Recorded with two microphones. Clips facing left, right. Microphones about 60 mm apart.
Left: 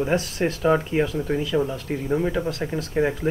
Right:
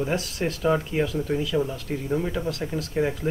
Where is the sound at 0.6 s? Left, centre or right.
Centre.